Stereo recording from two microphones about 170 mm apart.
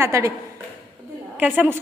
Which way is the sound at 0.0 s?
15° right (ahead or behind).